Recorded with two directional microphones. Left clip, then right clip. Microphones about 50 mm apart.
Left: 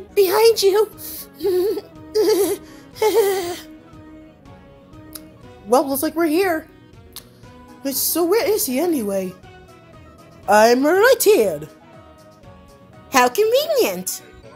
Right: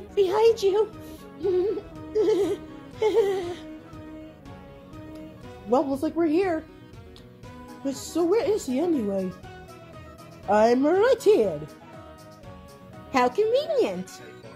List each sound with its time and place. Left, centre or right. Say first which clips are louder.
0.1 s a woman's voice: left 6 dB; left
2.1 s music: left 6 dB; left
5.7 s speech: left 6 dB; centre
7.8 s speech: left 5 dB; centre
10.5 s speech: left 7 dB; centre
13.1 s a woman's voice: left 7 dB; left